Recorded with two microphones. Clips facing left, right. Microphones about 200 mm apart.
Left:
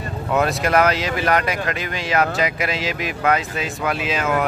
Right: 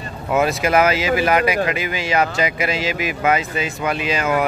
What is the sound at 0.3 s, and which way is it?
Speech, centre (ahead or behind).